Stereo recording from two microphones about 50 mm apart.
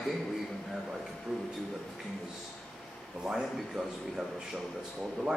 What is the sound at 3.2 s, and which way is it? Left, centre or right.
A man's voice, centre.